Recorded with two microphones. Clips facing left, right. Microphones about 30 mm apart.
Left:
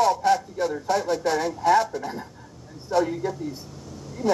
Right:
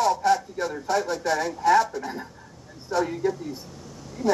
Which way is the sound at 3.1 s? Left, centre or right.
Centre.